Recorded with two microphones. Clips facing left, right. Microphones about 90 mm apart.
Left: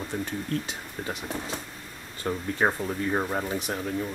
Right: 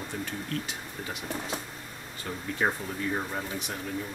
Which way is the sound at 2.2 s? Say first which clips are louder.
Left 4 dB; 35° left (ahead or behind).